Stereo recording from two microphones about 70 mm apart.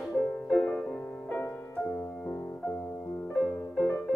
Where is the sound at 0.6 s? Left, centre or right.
Centre.